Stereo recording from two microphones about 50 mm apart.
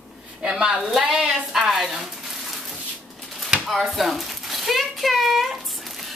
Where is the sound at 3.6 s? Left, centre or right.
Centre.